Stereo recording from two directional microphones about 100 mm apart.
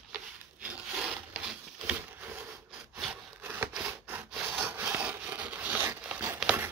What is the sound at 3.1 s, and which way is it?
Wood, 20° right (ahead or behind).